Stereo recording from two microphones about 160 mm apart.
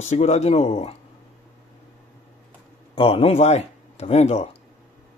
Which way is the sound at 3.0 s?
40° left (ahead or behind).